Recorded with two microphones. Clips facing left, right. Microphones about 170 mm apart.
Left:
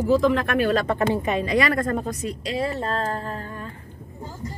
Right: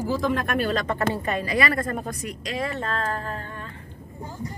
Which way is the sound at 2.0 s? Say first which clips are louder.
Left 4 dB; 25° left (ahead or behind).